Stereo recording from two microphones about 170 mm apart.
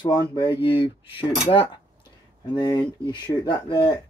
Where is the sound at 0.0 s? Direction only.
25° left (ahead or behind).